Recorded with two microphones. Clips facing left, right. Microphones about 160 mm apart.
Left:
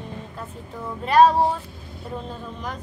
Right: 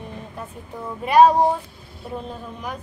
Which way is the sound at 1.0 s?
15° right (ahead or behind).